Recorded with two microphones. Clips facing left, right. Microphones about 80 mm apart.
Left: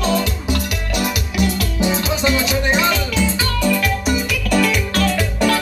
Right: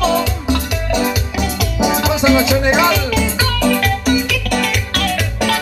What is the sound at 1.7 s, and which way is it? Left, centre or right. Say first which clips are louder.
Music: right 8 dB; right.